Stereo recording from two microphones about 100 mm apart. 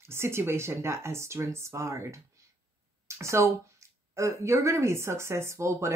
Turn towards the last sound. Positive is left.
turn(degrees=-30)  # may be behind; listen again after turning